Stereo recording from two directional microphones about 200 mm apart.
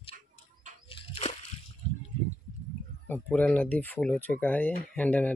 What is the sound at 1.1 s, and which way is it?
Slosh, 30° left (ahead or behind).